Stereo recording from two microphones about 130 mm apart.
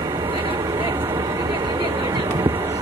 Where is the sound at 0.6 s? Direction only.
20° right (ahead or behind).